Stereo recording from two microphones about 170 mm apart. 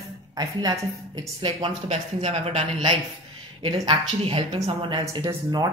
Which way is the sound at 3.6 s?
25° right (ahead or behind).